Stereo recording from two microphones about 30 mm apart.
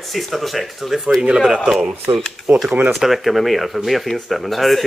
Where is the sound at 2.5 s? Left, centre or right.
Right.